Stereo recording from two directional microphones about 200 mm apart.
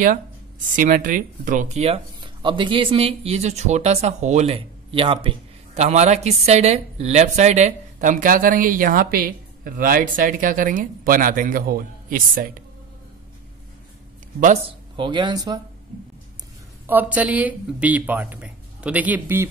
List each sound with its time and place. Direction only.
0.7 s speech: 40° right (ahead or behind)
14.4 s speech: 35° right (ahead or behind)
15.0 s speech: 25° right (ahead or behind)
16.8 s speech: 10° right (ahead or behind)